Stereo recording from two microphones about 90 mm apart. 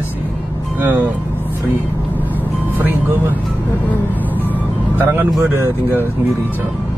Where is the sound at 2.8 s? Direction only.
20° right (ahead or behind).